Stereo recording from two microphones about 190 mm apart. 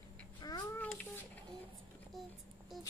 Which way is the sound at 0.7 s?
10° left (ahead or behind).